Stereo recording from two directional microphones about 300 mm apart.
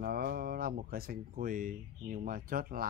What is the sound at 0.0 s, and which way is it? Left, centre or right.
Speech, right.